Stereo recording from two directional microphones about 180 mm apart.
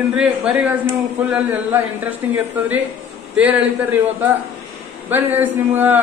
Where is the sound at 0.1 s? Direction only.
5° right (ahead or behind).